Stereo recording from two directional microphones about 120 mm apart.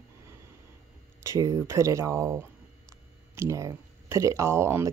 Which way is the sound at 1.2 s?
25° right (ahead or behind).